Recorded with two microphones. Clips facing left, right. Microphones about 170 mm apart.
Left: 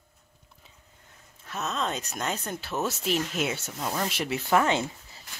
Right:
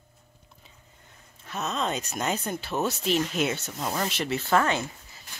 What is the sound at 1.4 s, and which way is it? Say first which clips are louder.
Speech: right 1 dB; centre (ahead or behind).